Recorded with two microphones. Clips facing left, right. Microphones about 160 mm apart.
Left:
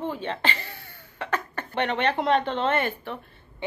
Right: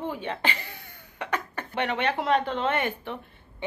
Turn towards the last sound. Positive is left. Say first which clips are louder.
# left 2 dB
turn(degrees=-15)  # may be behind; listen again after turning